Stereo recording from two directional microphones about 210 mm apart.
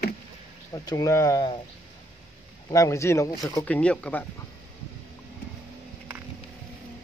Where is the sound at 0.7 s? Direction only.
15° left (ahead or behind).